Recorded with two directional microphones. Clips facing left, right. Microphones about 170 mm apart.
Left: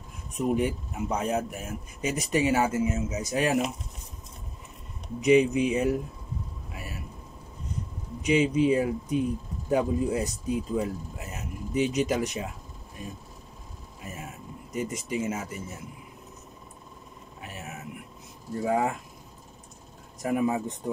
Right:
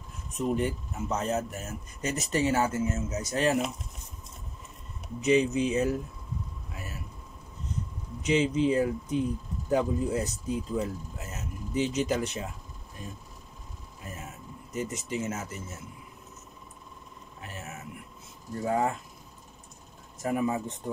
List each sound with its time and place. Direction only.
0.3 s speech: 10° left (ahead or behind)
5.2 s speech: 15° left (ahead or behind)
8.2 s speech: 10° left (ahead or behind)
14.7 s speech: 10° left (ahead or behind)
18.7 s speech: 15° left (ahead or behind)
20.2 s speech: 15° left (ahead or behind)